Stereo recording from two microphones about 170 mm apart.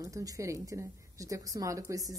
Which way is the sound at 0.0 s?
20° right (ahead or behind).